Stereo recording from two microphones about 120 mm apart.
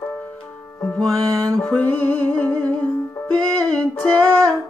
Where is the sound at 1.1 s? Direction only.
25° right (ahead or behind).